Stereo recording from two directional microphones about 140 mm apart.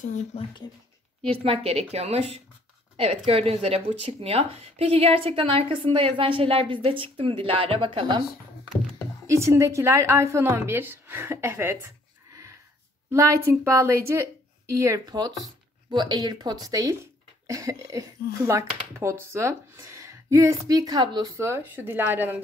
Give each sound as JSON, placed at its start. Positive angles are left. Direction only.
{"t": 0.0, "sound": "speech", "side_deg": 60}
{"t": 1.2, "sound": "a woman's voice", "side_deg": -40}
{"t": 9.3, "sound": "speech", "side_deg": -20}
{"t": 13.1, "sound": "speech", "side_deg": -20}
{"t": 21.4, "sound": "speech", "side_deg": -20}